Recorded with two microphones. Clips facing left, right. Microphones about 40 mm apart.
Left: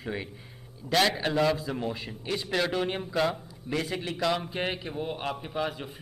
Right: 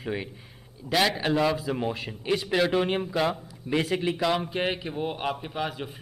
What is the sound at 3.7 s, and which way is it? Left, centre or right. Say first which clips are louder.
Speech: right 4 dB; right.